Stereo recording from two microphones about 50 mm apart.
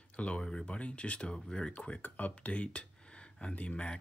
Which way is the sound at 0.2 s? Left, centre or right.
Left.